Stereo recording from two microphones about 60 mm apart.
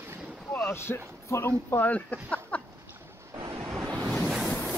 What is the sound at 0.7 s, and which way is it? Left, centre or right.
Speech, left.